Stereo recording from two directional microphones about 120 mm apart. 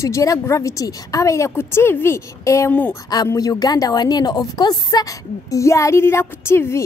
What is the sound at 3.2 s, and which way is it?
Speech, 25° left (ahead or behind).